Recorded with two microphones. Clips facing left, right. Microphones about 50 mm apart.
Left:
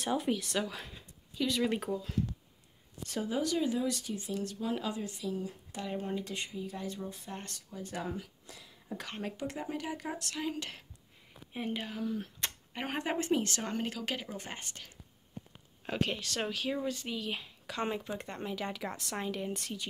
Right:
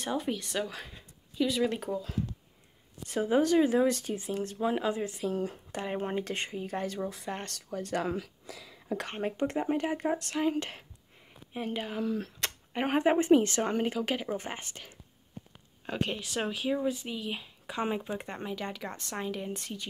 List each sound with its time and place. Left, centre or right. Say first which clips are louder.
0.0 s speech: even; centre
3.1 s speech: right 6 dB; right
3.3 s speech: right 8 dB; right
5.9 s speech: right 4 dB; right
6.9 s speech: right 6 dB; right
9.0 s speech: right 6 dB; right
11.5 s speech: right 2 dB; centre
12.7 s speech: right 9 dB; right
16.0 s speech: right 2 dB; centre
17.6 s speech: right 3 dB; centre